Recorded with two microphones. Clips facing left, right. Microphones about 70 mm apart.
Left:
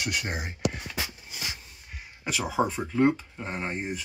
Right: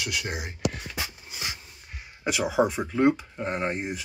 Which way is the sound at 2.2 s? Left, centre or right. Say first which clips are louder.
Right 3 dB; centre.